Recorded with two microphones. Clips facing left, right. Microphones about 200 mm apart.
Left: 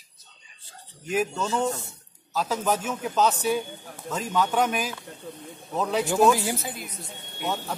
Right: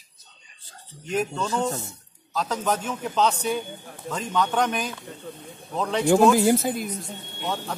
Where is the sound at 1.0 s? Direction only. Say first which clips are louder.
Even; 5° left (ahead or behind).